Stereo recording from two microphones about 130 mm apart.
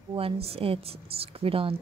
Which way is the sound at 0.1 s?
50° right (ahead or behind).